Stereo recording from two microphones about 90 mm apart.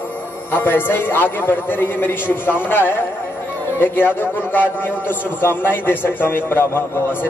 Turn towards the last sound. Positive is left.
turn(degrees=20)  # may be behind; listen again after turning